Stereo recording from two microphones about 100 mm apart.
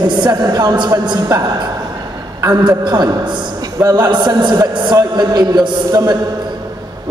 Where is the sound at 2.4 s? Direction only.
40° right (ahead or behind).